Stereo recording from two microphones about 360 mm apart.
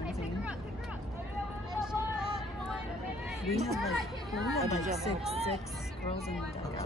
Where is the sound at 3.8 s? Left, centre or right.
Centre.